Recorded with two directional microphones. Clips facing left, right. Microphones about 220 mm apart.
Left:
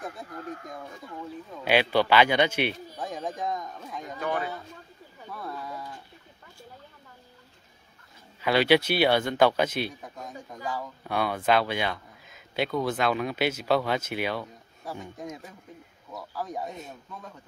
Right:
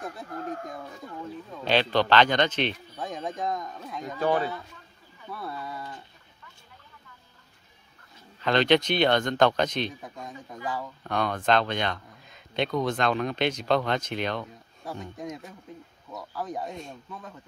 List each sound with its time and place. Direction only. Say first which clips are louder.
0.5 s speech: right 2 dB; 45° right (ahead or behind)
1.6 s speech: left 1 dB; 10° left (ahead or behind)
4.2 s speech: right 5 dB; 30° right (ahead or behind)
5.3 s speech: right 1 dB; centre (ahead or behind)
8.4 s speech: even; 10° left (ahead or behind)